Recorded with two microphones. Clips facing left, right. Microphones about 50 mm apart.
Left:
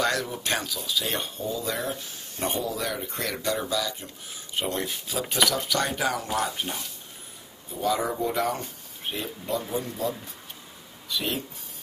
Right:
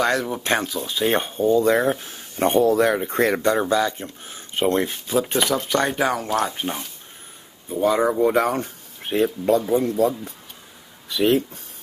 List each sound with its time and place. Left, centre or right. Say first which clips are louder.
0.0 s speech: right 5 dB; right
7.7 s speech: right 7 dB; right
8.0 s speech: right 8 dB; right